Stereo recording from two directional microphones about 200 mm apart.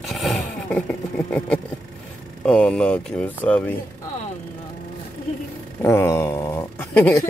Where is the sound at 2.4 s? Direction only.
5° left (ahead or behind).